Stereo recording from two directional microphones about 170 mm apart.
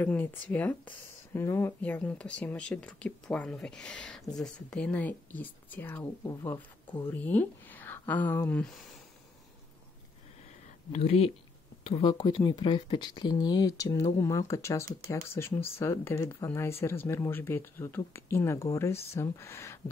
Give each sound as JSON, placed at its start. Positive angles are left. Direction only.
{"t": 0.0, "sound": "speech", "side_deg": 10}
{"t": 10.9, "sound": "speech", "side_deg": 35}